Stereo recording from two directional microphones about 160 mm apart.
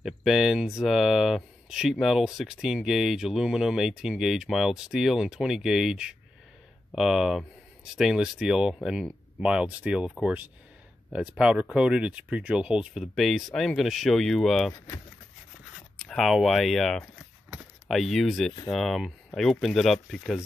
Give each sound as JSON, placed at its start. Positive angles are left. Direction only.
{"t": 0.0, "sound": "speech", "side_deg": 0}
{"t": 16.0, "sound": "speech", "side_deg": 0}